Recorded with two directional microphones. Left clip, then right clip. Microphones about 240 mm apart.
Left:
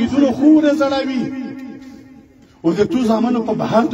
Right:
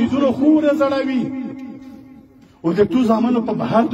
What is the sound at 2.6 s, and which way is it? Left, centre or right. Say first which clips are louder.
A man's voice: even; centre.